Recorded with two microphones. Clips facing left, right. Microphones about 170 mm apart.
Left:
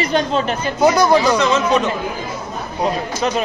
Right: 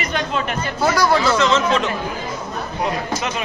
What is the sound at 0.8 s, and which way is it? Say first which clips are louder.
Speech: left 4 dB; 20° left (ahead or behind).